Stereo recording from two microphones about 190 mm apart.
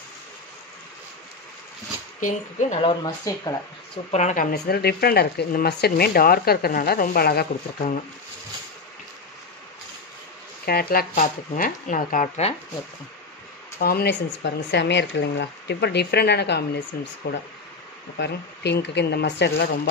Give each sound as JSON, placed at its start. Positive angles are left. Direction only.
{"t": 2.1, "sound": "speech", "side_deg": 40}
{"t": 2.8, "sound": "speech", "side_deg": 25}
{"t": 4.1, "sound": "speech", "side_deg": 40}
{"t": 10.6, "sound": "speech", "side_deg": 55}
{"t": 13.7, "sound": "speech", "side_deg": 55}
{"t": 18.1, "sound": "speech", "side_deg": 65}